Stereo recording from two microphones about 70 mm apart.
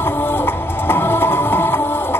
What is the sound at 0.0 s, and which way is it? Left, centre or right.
Music, left.